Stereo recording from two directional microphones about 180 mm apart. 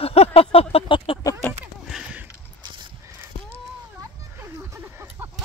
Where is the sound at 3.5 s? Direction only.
15° right (ahead or behind).